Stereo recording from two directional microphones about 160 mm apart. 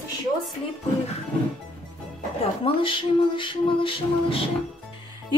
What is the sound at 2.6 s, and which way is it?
Music, 35° left (ahead or behind).